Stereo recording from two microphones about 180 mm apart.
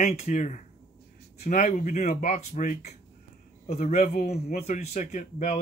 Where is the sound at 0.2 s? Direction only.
40° left (ahead or behind).